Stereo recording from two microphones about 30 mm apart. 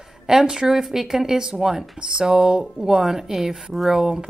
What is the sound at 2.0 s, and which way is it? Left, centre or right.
Speech, right.